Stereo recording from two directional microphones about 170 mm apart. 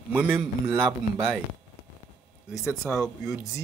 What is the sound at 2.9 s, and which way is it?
Speech, centre (ahead or behind).